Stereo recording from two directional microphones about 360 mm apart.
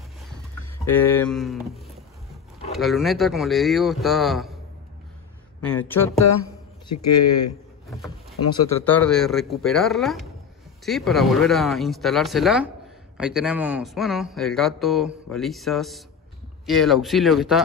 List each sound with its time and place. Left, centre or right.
0.8 s speech: centre
5.8 s speech: centre
7.1 s speech: left
7.9 s speech: centre